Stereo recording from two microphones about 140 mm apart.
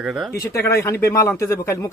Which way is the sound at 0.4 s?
20° left (ahead or behind).